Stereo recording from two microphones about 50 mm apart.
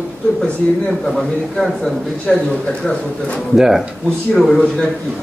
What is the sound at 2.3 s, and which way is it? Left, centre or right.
A man's voice, centre.